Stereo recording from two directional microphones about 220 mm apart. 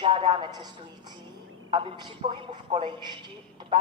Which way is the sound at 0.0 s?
20° right (ahead or behind).